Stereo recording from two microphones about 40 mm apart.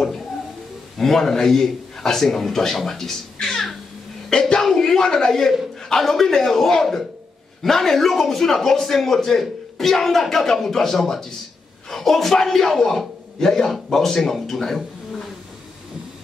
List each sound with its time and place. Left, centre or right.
0.9 s a man's voice: centre
3.3 s a sound: centre
4.3 s a man's voice: centre